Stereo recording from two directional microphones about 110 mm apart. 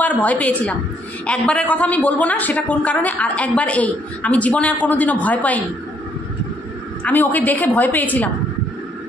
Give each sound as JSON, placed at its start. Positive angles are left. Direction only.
{"t": 0.0, "sound": "a man's voice", "side_deg": 15}
{"t": 7.0, "sound": "a man's voice", "side_deg": 15}